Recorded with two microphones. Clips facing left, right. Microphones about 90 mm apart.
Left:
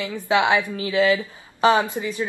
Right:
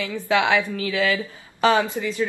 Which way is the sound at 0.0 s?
20° left (ahead or behind).